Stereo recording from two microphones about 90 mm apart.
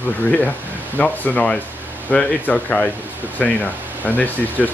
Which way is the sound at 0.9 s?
15° left (ahead or behind).